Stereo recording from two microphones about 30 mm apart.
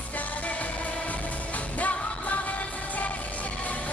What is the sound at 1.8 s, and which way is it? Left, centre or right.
Music, left.